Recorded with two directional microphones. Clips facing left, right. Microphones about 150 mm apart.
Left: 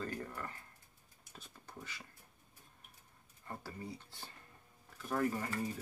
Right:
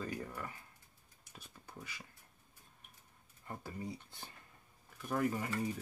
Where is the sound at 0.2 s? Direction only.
5° right (ahead or behind).